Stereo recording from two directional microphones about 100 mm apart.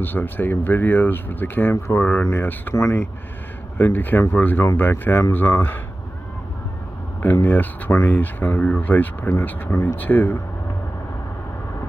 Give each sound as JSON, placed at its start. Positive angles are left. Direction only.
{"t": 0.0, "sound": "speech", "side_deg": 20}
{"t": 7.2, "sound": "speech", "side_deg": 20}